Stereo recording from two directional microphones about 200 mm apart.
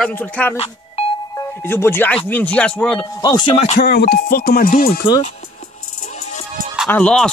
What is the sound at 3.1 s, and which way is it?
Speech, 20° left (ahead or behind).